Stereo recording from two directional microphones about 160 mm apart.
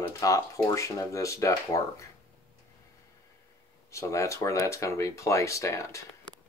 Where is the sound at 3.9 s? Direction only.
20° left (ahead or behind).